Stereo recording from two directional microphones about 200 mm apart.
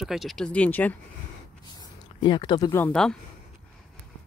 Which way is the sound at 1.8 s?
25° left (ahead or behind).